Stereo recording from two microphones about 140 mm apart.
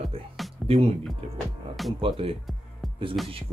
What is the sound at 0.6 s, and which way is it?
Music, centre (ahead or behind).